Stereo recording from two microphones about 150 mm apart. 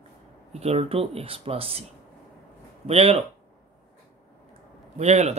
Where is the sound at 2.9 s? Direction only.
45° right (ahead or behind).